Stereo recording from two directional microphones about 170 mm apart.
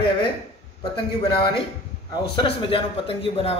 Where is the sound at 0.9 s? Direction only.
30° left (ahead or behind).